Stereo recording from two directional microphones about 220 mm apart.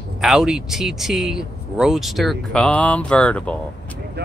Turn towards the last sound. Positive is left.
turn(degrees=5)  # may be behind; listen again after turning